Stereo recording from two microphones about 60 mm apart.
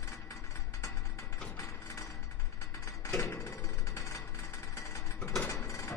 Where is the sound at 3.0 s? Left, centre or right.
Left.